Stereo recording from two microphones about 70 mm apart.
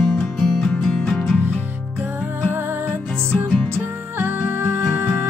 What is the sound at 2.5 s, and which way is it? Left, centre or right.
Music, right.